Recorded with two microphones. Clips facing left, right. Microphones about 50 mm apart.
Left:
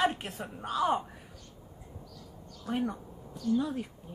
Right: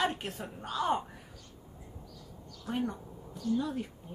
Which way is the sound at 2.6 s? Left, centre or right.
Centre.